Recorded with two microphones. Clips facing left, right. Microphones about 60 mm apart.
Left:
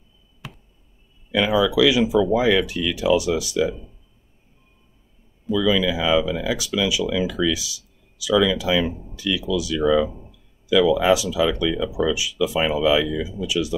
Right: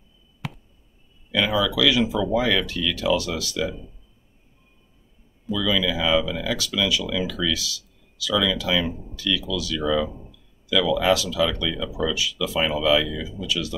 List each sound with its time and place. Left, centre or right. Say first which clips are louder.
1.3 s speech: left 4 dB; centre
5.5 s speech: left 4 dB; centre